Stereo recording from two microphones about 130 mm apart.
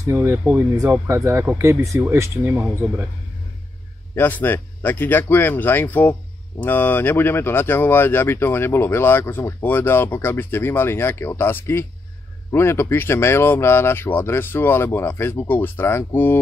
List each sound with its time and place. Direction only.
0.0 s speech: 20° right (ahead or behind)
0.4 s speech: 10° right (ahead or behind)
4.1 s speech: 15° left (ahead or behind)